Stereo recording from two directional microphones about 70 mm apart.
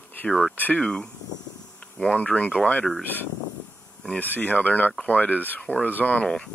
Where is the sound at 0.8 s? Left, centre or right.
Centre.